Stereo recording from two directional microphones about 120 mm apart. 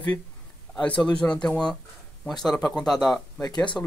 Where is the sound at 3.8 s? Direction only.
20° left (ahead or behind).